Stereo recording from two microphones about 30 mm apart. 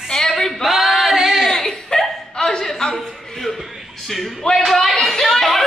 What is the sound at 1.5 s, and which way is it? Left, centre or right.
Hiccup, centre.